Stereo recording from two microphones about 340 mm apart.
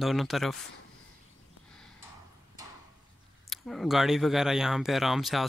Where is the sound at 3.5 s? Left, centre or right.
Centre.